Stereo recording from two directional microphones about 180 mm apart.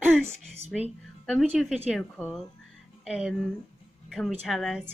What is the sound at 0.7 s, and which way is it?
A woman's voice, centre (ahead or behind).